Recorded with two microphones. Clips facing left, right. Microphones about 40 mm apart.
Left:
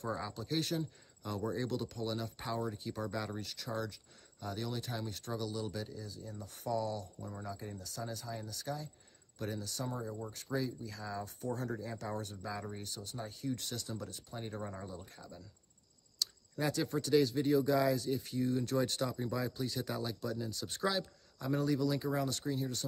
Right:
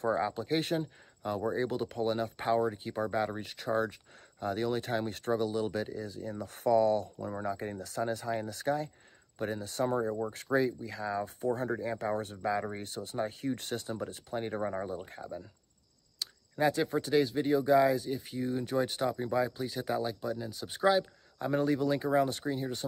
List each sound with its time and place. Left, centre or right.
0.0 s speech: right
9.4 s speech: right